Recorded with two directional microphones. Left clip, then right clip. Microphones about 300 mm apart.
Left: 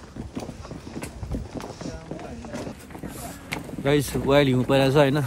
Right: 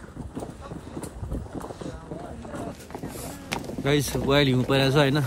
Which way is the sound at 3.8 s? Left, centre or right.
Centre.